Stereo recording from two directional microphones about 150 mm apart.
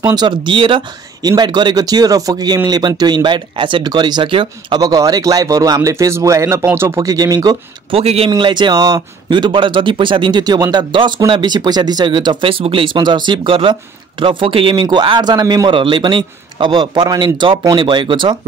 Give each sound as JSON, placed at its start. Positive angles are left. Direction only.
{"t": 0.0, "sound": "speech", "side_deg": -25}
{"t": 7.9, "sound": "speech", "side_deg": -40}
{"t": 8.3, "sound": "speech", "side_deg": -30}